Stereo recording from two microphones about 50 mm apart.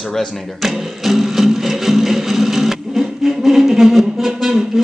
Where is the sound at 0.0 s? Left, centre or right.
Centre.